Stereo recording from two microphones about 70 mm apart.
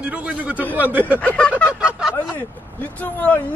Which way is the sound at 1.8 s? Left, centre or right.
Centre.